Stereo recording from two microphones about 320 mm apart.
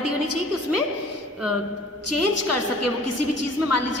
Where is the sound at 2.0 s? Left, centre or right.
Left.